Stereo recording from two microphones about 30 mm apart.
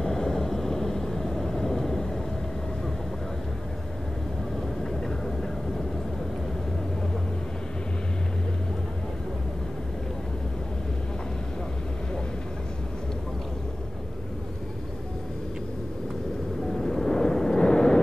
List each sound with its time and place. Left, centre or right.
0.0 s vehicle: centre
5.0 s vehicle: centre
16.7 s vehicle: centre